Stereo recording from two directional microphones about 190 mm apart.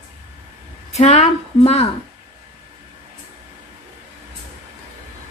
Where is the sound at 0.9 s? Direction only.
35° left (ahead or behind).